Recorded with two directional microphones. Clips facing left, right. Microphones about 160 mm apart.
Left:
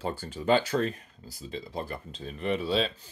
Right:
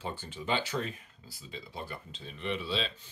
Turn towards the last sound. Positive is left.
turn(degrees=45)  # may be behind; listen again after turning